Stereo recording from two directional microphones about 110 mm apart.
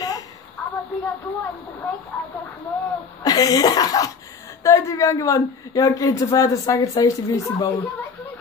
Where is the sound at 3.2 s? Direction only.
35° left (ahead or behind).